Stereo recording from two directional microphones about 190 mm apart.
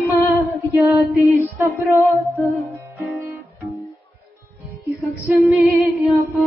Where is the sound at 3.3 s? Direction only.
Centre (ahead or behind).